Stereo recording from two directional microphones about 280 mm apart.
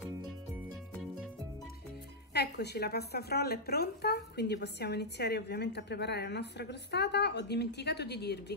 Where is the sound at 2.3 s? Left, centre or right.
Left.